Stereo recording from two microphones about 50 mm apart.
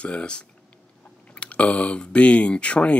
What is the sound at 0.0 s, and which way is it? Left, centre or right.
Speech, left.